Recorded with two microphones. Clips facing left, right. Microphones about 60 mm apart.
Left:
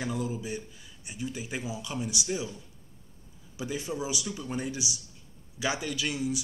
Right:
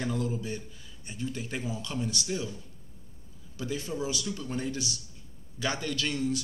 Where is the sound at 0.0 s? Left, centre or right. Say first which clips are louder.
Right 1 dB; centre.